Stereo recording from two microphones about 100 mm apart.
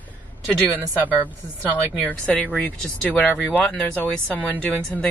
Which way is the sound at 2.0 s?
15° left (ahead or behind).